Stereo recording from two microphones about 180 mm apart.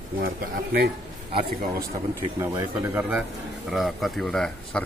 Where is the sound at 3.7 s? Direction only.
Centre (ahead or behind).